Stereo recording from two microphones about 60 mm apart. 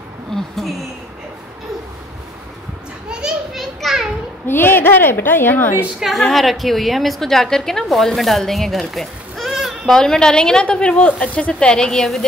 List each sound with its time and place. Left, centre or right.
3.1 s children playing: centre
4.5 s a woman's voice: left
5.9 s a woman's voice: centre
9.9 s speech: centre